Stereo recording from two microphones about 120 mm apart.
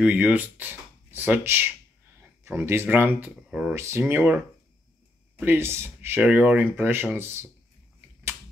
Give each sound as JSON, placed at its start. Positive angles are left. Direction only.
{"t": 0.0, "sound": "speech", "side_deg": -10}
{"t": 3.4, "sound": "speech", "side_deg": -5}
{"t": 3.7, "sound": "speech", "side_deg": -20}
{"t": 5.4, "sound": "speech", "side_deg": -20}